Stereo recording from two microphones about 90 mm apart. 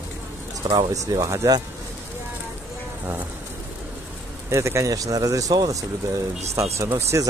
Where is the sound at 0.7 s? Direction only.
45° right (ahead or behind).